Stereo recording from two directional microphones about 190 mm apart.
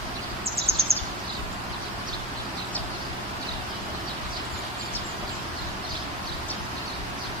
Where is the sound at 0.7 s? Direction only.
30° right (ahead or behind).